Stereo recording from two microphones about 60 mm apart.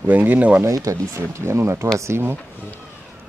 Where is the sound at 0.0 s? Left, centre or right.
Right.